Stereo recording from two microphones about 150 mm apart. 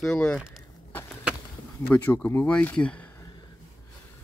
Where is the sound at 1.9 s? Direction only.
10° left (ahead or behind).